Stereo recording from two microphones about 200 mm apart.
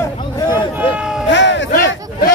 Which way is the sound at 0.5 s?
10° right (ahead or behind).